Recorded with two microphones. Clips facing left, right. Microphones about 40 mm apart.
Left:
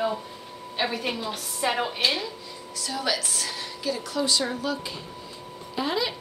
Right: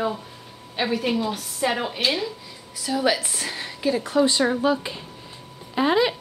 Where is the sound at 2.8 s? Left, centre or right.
Centre.